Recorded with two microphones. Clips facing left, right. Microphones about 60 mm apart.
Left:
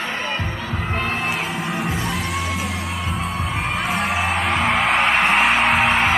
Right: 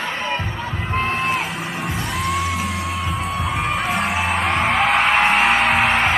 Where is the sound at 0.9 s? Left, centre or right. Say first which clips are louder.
Right 3 dB; right.